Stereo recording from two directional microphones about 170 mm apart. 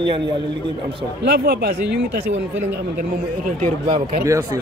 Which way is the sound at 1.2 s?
70° right (ahead or behind).